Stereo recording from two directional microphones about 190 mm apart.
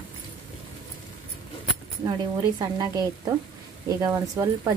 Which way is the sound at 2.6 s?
20° right (ahead or behind).